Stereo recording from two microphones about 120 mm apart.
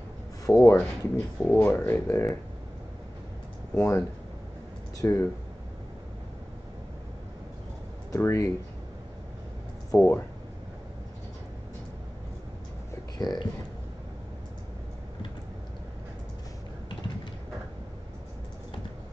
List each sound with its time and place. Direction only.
0.5 s speech: 20° left (ahead or behind)
3.7 s speech: 25° left (ahead or behind)
5.0 s speech: 20° left (ahead or behind)
8.1 s speech: 25° left (ahead or behind)
9.9 s speech: 20° left (ahead or behind)
13.2 s speech: 35° left (ahead or behind)